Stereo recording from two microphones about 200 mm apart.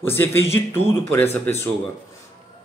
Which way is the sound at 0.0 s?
10° left (ahead or behind).